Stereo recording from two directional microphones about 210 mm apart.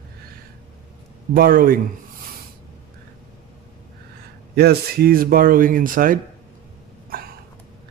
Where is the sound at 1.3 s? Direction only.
45° right (ahead or behind).